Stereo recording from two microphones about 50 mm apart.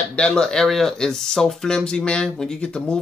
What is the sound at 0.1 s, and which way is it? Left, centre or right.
Speech, centre.